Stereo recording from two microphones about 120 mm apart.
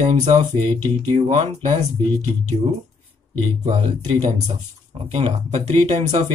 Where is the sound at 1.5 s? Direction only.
65° right (ahead or behind).